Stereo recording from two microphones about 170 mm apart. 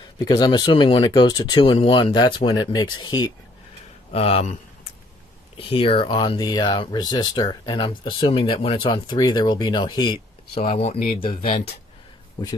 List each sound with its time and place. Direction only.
0.2 s speech: 25° left (ahead or behind)
4.1 s speech: 35° left (ahead or behind)
5.6 s speech: 30° left (ahead or behind)